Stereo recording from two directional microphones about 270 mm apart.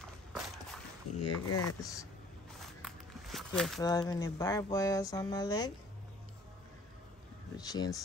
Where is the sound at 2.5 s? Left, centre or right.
Centre.